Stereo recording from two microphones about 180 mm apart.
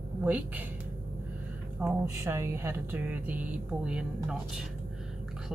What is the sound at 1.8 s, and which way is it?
Speech, 15° right (ahead or behind).